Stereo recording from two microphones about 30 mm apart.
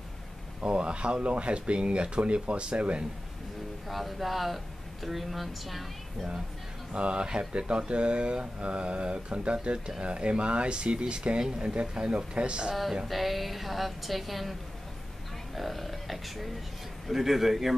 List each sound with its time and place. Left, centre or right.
0.6 s speech: right
3.9 s a woman's voice: centre
6.9 s speech: right
13.1 s a woman's voice: centre
15.5 s speech: centre